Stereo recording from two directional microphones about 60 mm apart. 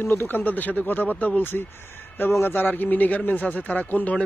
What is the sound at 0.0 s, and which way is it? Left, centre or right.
A man's voice, left.